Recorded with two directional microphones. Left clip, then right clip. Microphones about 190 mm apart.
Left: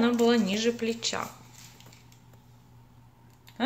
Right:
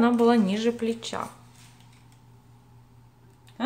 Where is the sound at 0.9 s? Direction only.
15° right (ahead or behind).